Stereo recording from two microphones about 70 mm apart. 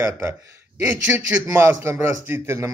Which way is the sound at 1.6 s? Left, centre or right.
Right.